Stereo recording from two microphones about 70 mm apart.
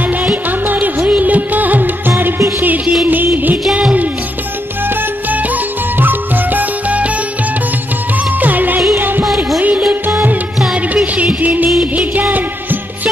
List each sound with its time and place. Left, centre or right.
0.2 s music: right
5.9 s music: right
8.4 s music: right
9.2 s music: centre
9.6 s music of bollywood: right
10.0 s music: right
10.6 s music: centre
11.1 s music: right